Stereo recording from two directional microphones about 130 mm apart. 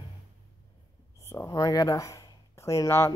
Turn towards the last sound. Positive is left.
turn(degrees=20)  # may be behind; listen again after turning